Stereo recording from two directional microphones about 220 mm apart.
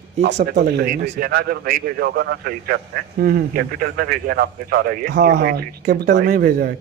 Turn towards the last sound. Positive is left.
turn(degrees=-40)  # may be behind; listen again after turning